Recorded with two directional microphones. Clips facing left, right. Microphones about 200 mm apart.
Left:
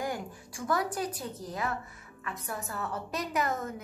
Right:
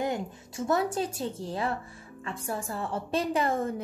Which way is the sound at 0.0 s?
25° right (ahead or behind).